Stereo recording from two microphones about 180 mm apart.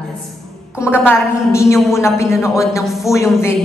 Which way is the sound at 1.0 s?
15° left (ahead or behind).